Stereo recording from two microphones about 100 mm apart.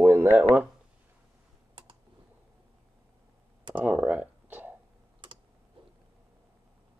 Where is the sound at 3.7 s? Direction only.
15° right (ahead or behind).